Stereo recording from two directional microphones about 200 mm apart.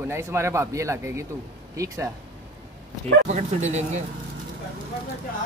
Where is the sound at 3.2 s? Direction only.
35° right (ahead or behind).